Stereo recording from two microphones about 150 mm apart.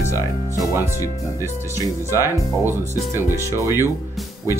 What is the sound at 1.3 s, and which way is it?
Speech, 20° right (ahead or behind).